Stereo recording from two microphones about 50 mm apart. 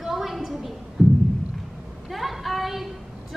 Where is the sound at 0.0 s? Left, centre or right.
Centre.